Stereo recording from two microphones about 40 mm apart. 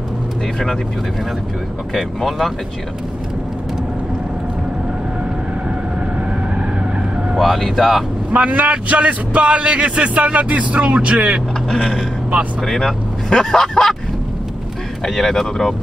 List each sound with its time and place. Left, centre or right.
2.0 s speech: centre
7.3 s speech: centre
8.3 s a man's voice: right
12.6 s speech: centre
15.0 s speech: centre